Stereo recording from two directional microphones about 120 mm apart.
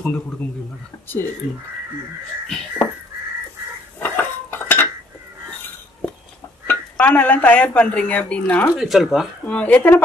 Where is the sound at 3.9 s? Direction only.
15° left (ahead or behind).